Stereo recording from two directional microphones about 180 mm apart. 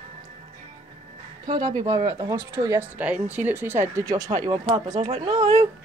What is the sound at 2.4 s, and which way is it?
Speech, 15° right (ahead or behind).